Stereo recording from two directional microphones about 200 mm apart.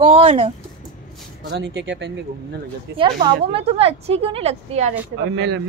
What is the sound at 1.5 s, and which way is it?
Speech, 60° right (ahead or behind).